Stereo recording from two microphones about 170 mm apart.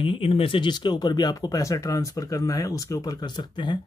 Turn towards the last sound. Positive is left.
turn(degrees=25)  # may be behind; listen again after turning